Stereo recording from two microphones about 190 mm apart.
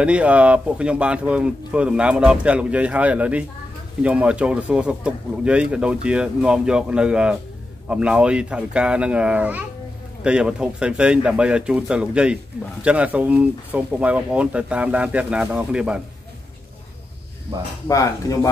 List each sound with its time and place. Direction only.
0.0 s speech: 5° right (ahead or behind)
17.8 s speech: 15° left (ahead or behind)